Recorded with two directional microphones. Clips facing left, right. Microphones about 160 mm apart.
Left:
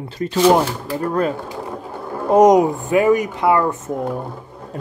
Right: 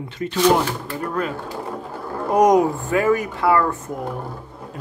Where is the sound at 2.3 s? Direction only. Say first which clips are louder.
Left 4 dB; 20° left (ahead or behind).